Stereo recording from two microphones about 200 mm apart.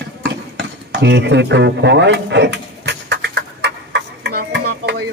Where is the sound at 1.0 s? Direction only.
60° right (ahead or behind).